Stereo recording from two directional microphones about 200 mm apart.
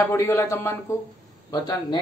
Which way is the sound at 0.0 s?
15° left (ahead or behind).